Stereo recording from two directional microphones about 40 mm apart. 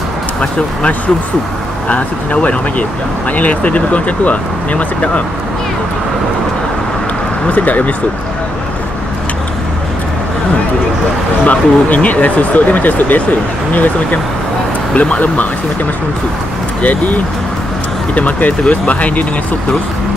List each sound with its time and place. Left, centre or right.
0.4 s speech: left
7.4 s speech: left
11.4 s speech: left
15.0 s speech: left
16.8 s speech: left